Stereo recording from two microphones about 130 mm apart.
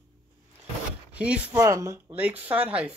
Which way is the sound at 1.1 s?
10° right (ahead or behind).